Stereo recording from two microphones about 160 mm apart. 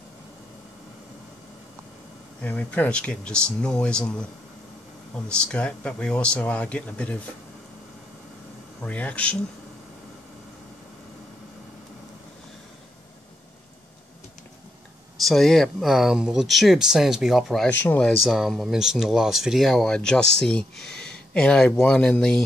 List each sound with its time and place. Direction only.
2.4 s speech: 10° left (ahead or behind)
8.8 s speech: 10° left (ahead or behind)
15.2 s speech: centre (ahead or behind)